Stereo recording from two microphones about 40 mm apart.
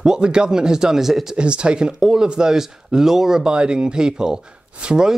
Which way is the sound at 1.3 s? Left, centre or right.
Right.